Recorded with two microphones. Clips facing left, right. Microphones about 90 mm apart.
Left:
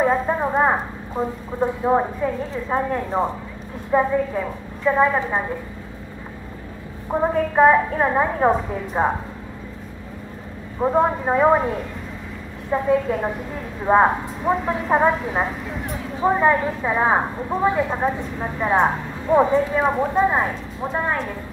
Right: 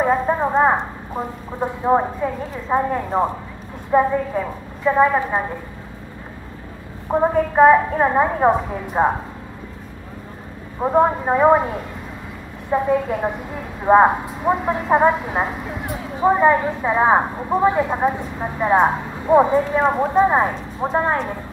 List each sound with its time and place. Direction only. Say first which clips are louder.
0.0 s a sound: right 1 dB; 10° right (ahead or behind)
0.7 s a woman's voice: right 2 dB; 10° right (ahead or behind)
7.1 s a woman's voice: right 3 dB; 10° right (ahead or behind)
10.8 s a woman's voice: right 2 dB; 10° right (ahead or behind)
12.7 s a woman's voice: right 1 dB; 10° right (ahead or behind)
20.2 s speech: right 3 dB; 25° right (ahead or behind)